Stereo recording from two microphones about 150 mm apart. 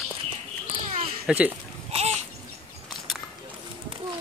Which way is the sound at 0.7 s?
40° right (ahead or behind).